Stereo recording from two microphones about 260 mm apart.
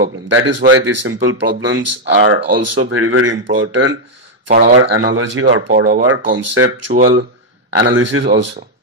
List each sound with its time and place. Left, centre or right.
0.0 s speech: right
6.9 s speech: right
7.8 s speech: right